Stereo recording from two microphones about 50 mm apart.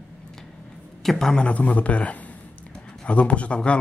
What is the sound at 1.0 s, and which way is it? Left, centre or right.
Speech, centre.